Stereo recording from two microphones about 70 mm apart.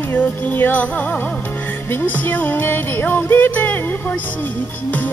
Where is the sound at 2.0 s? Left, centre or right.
Left.